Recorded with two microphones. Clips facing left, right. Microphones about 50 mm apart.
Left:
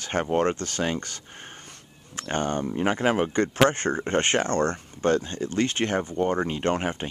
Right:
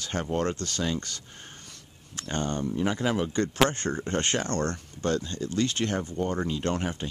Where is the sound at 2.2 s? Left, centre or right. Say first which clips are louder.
Left 3 dB; left.